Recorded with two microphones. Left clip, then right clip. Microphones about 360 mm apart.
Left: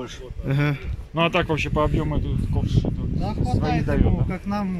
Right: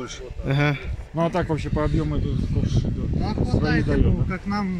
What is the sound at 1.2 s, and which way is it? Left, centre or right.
Speech, left.